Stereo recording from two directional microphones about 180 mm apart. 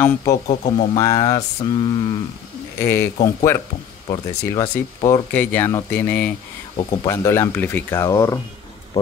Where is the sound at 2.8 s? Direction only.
15° left (ahead or behind).